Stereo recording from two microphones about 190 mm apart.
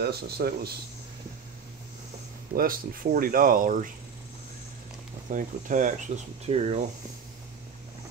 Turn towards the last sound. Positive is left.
turn(degrees=-35)  # may be behind; listen again after turning